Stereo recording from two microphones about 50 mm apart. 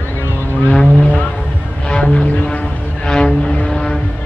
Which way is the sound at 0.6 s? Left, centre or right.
Centre.